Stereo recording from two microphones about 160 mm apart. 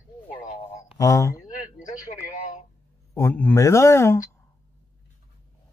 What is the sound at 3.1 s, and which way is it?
Speech, 15° left (ahead or behind).